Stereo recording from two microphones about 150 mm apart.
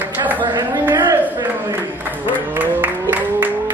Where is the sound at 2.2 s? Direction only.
10° right (ahead or behind).